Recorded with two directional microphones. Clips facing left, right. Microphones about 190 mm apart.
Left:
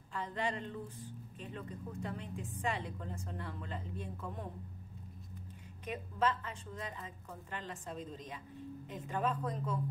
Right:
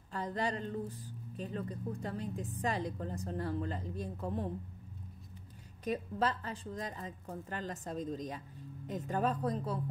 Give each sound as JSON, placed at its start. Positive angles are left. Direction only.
{"t": 0.1, "sound": "a woman's voice", "side_deg": -40}
{"t": 5.9, "sound": "a woman's voice", "side_deg": -35}